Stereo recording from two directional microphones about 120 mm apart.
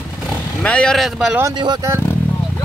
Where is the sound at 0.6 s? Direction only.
5° left (ahead or behind).